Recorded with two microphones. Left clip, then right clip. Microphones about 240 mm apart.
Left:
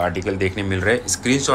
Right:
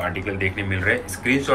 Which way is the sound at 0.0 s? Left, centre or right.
Centre.